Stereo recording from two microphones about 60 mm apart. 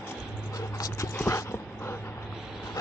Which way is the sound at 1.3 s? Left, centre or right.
Left.